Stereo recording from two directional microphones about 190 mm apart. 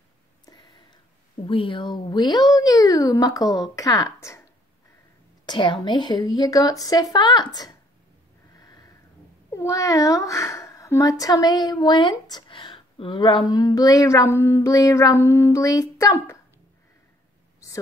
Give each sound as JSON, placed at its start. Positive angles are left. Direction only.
{"t": 0.5, "sound": "a sound", "side_deg": 20}
{"t": 1.4, "sound": "a woman's voice", "side_deg": 25}
{"t": 5.5, "sound": "a woman's voice", "side_deg": 25}
{"t": 8.5, "sound": "sniff", "side_deg": 20}
{"t": 9.5, "sound": "speech", "side_deg": 15}